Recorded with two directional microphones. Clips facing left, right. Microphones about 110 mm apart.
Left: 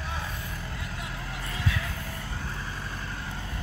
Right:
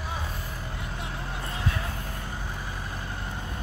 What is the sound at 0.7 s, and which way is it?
Vehicle, 25° right (ahead or behind).